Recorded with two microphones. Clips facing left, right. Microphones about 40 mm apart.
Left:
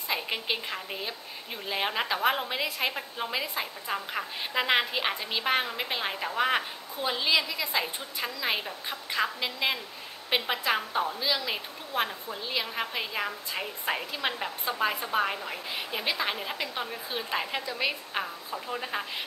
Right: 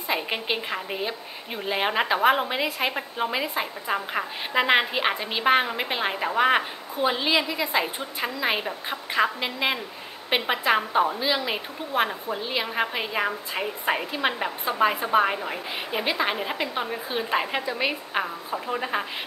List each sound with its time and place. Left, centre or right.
0.1 s a woman's voice: right